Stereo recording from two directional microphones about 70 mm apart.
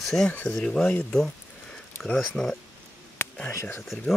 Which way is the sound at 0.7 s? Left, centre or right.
Centre.